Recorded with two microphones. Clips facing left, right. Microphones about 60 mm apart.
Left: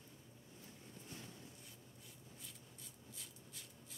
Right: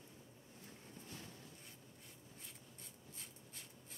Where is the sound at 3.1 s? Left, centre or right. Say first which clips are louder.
Right 1 dB; right.